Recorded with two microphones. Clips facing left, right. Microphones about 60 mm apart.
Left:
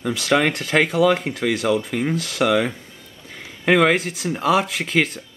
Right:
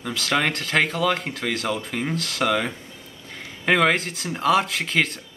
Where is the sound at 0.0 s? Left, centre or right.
Centre.